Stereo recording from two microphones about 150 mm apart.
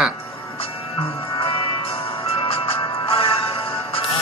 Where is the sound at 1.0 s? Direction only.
35° left (ahead or behind).